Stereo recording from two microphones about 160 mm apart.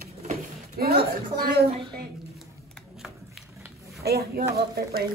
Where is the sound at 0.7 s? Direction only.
70° right (ahead or behind).